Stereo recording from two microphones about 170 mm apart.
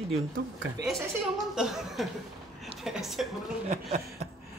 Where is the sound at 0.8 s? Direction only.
85° right.